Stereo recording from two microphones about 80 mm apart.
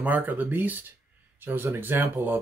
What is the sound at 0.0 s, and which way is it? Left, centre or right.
Speech, right.